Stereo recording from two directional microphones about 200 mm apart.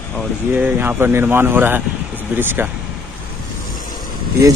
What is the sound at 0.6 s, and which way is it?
Speech, 10° right (ahead or behind).